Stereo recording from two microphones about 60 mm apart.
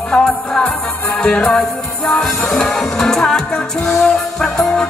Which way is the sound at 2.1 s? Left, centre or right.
Centre.